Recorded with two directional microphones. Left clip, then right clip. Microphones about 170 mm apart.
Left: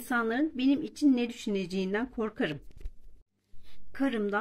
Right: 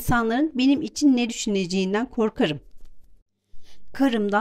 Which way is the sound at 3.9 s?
40° right (ahead or behind).